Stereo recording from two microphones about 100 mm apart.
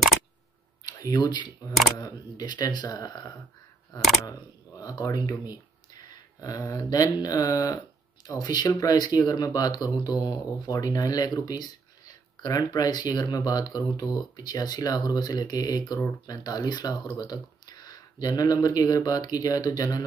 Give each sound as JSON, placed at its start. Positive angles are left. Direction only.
{"t": 0.8, "sound": "speech", "side_deg": 40}